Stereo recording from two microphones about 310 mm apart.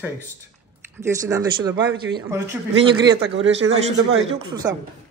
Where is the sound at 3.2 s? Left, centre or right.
Right.